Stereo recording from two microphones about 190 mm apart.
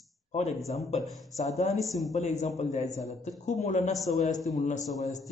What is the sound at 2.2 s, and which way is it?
Speech, 35° left (ahead or behind).